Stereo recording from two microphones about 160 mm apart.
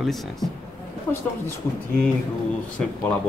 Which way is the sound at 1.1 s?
10° left (ahead or behind).